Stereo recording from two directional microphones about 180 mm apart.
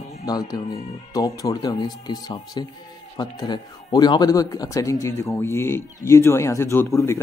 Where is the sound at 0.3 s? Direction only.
20° left (ahead or behind).